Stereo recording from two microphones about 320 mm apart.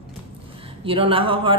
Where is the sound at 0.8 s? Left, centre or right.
Centre.